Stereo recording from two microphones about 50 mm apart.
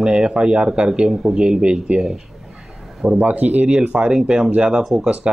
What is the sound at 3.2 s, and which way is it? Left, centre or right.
Speech, right.